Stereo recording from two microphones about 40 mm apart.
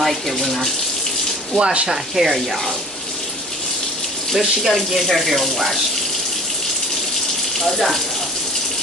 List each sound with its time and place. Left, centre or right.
0.0 s speech: centre
1.5 s speech: right
1.9 s speech: centre
4.3 s speech: centre
7.7 s speech: centre